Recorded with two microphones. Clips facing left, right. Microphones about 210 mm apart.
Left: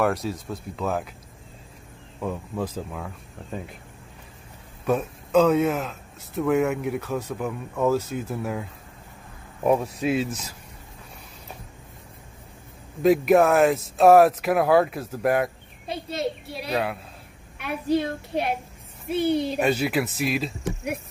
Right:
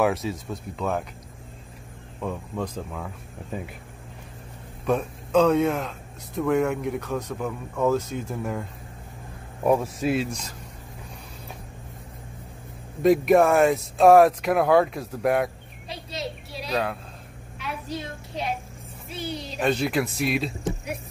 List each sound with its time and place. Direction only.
0.0 s a man's voice: centre (ahead or behind)
2.2 s a man's voice: 5° left (ahead or behind)
3.5 s speech: 5° right (ahead or behind)
4.8 s a man's voice: 5° left (ahead or behind)
13.0 s a man's voice: centre (ahead or behind)
15.9 s a woman's voice: 55° left (ahead or behind)
16.7 s a man's voice: 5° left (ahead or behind)
17.6 s a woman's voice: 60° left (ahead or behind)
19.6 s a man's voice: 5° left (ahead or behind)